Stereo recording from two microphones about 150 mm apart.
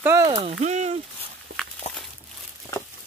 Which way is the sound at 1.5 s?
90° right.